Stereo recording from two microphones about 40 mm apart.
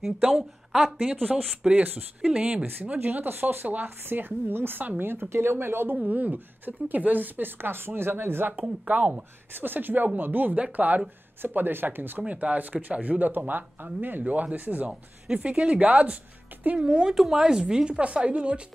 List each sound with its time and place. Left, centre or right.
0.4 s a woman's voice: centre
1.2 s a woman's voice: right
2.3 s speech: right
2.8 s speech: right
3.6 s speech: right
5.3 s speech: right
6.0 s speech: right
8.5 s speech: right
9.6 s speech: right
10.5 s speech: right
11.4 s speech: right
12.3 s speech: right
15.3 s a woman's voice: right